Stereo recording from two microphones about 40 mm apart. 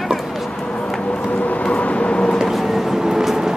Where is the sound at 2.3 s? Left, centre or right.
Centre.